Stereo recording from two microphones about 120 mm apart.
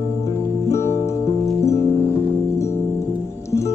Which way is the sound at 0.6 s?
25° left (ahead or behind).